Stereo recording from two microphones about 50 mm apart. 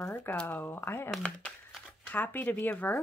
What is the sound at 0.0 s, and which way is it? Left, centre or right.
Speech, left.